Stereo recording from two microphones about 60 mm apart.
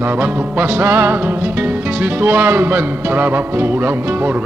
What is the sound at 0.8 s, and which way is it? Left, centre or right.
Music, right.